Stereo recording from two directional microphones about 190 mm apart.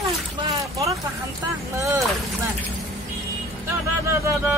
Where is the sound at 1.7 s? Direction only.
15° right (ahead or behind).